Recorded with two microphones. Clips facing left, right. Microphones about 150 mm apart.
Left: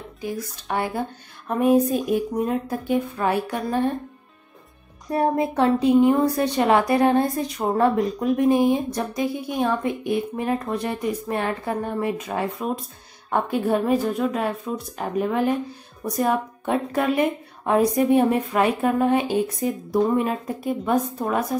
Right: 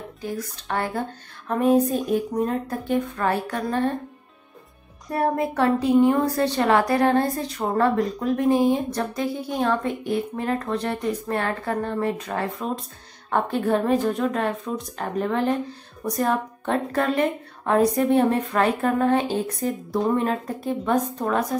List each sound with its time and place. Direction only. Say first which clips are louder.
0.2 s a woman's voice: left 1 dB; 15° left (ahead or behind)
5.1 s a woman's voice: left 2 dB; 20° left (ahead or behind)